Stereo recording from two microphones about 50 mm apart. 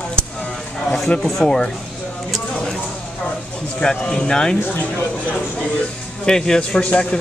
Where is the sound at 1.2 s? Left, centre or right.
Centre.